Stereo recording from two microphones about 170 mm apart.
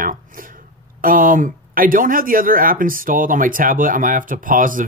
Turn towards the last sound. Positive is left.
turn(degrees=-50)  # may be behind; listen again after turning